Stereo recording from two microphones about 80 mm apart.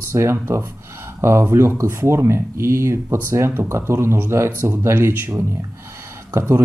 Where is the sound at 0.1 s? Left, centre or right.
Right.